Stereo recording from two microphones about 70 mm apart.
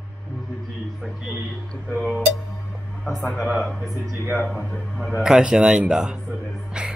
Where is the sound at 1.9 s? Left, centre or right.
Centre.